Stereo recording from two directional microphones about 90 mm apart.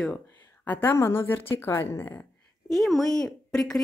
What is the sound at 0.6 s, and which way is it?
Speech, 20° left (ahead or behind).